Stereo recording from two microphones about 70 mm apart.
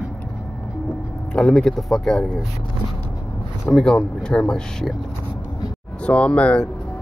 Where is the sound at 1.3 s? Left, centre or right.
Centre.